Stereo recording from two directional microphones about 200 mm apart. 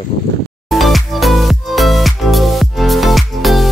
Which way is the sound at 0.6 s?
Centre (ahead or behind).